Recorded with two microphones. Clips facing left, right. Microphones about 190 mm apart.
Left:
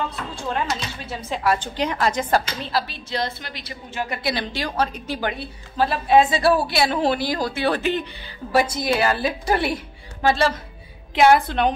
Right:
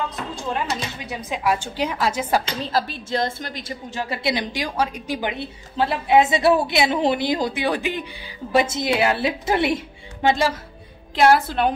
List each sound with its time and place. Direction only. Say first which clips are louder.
1.0 s speech: left 1 dB; 15° right (ahead or behind)
2.4 s a woman's voice: right 2 dB; 40° right (ahead or behind)
4.1 s a woman's voice: right 3 dB; 20° right (ahead or behind)
8.5 s a woman's voice: even; 25° right (ahead or behind)
11.1 s a woman's voice: left 1 dB; centre (ahead or behind)